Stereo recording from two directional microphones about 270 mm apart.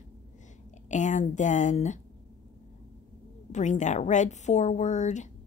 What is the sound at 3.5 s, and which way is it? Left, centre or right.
Speech, left.